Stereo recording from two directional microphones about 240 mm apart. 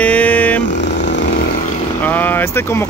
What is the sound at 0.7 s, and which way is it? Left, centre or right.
Vehicle, left.